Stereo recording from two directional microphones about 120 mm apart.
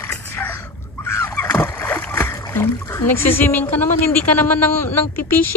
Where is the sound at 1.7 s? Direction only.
15° left (ahead or behind).